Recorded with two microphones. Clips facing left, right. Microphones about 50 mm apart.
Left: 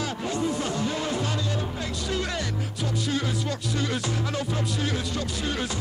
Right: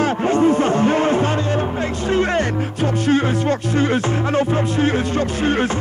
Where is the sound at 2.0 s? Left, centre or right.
Right.